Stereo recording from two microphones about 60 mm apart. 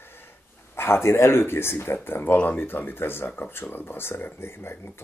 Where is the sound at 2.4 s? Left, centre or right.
Left.